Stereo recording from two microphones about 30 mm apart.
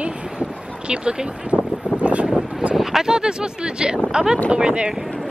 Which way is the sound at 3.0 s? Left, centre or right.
Right.